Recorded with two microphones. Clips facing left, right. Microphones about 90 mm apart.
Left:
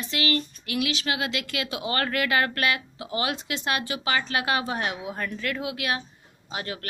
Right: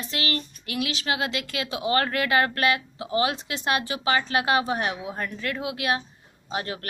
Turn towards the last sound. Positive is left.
turn(degrees=-30)  # may be behind; listen again after turning